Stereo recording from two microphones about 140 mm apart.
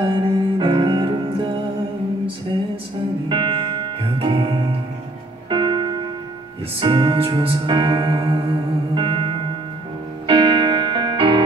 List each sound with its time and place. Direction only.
0.0 s music: 35° right (ahead or behind)
3.3 s music: 35° right (ahead or behind)